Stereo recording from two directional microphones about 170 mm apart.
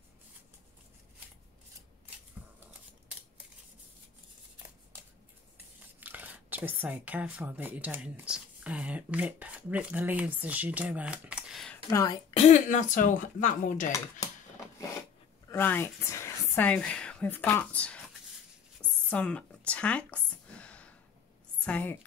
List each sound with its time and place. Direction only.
5.9 s speech: 10° right (ahead or behind)
11.9 s speech: 20° left (ahead or behind)
12.4 s speech: 45° left (ahead or behind)
15.5 s speech: 10° left (ahead or behind)
18.8 s a sound: 5° left (ahead or behind)
21.6 s a woman's voice: 10° left (ahead or behind)